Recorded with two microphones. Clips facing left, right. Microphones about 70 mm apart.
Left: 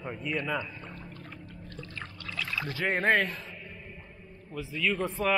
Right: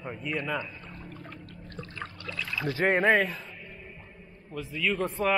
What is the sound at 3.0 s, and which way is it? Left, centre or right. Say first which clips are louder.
Speech: right 2 dB; centre.